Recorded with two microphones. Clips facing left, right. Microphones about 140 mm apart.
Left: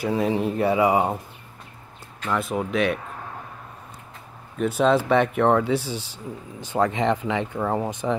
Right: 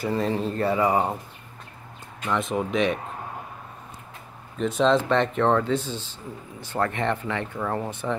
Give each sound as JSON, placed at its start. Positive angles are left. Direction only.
{"t": 0.0, "sound": "speech", "side_deg": 10}
{"t": 2.2, "sound": "speech", "side_deg": 0}
{"t": 4.6, "sound": "speech", "side_deg": 5}